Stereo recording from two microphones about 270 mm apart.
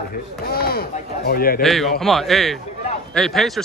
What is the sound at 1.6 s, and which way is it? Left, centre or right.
Speech, centre.